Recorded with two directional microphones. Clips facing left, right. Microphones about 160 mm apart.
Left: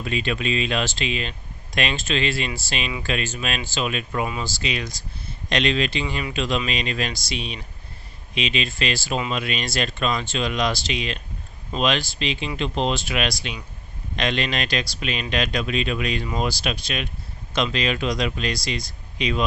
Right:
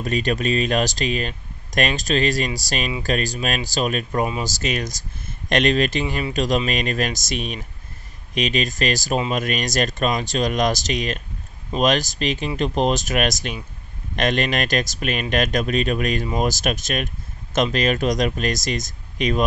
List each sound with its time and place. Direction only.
0.0 s speech: 40° right (ahead or behind)